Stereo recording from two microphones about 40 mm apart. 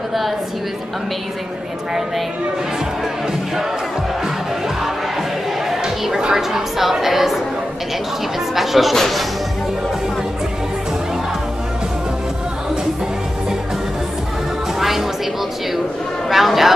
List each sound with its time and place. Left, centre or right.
5.8 s chatter: centre
6.2 s a woman's voice: centre
8.5 s a man's voice: centre
8.9 s speech: centre
14.8 s music: centre
16.3 s a man's voice: centre